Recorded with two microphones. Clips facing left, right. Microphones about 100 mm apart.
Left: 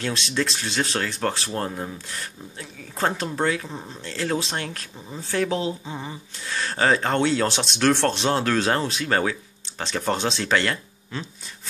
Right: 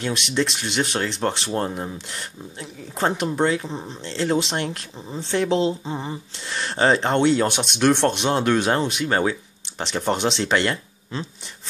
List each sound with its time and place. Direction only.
0.0 s speech: 20° right (ahead or behind)